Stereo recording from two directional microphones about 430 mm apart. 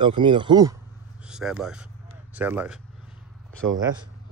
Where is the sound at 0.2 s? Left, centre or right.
Centre.